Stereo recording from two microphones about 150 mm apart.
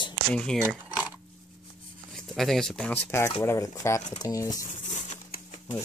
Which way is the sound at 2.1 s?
Centre (ahead or behind).